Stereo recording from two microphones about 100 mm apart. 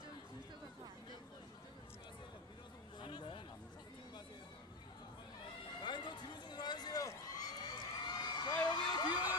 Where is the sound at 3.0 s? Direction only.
55° left (ahead or behind).